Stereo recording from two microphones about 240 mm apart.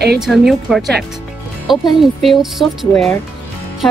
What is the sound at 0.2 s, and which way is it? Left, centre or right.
Speech, centre.